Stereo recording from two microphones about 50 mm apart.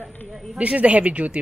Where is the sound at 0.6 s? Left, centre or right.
Right.